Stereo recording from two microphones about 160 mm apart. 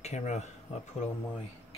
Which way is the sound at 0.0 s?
45° left (ahead or behind).